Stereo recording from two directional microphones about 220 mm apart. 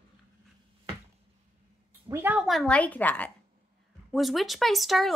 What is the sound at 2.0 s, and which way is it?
Speech, 10° right (ahead or behind).